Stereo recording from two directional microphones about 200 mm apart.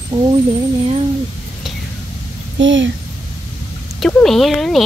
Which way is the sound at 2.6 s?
65° right (ahead or behind).